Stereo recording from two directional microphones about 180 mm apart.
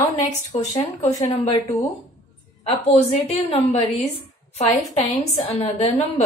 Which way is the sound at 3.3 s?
35° left (ahead or behind).